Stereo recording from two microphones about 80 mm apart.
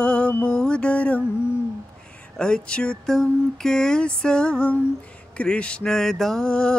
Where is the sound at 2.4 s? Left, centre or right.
Centre.